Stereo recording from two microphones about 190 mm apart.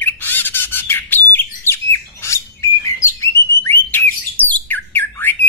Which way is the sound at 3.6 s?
10° left (ahead or behind).